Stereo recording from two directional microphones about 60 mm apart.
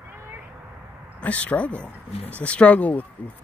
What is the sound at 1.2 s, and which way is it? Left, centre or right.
Speech, left.